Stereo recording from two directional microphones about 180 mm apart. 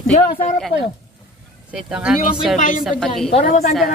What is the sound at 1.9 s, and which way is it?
Speech, 5° right (ahead or behind).